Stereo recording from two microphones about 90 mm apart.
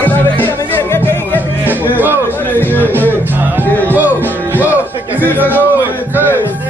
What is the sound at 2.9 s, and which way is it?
Music, 20° right (ahead or behind).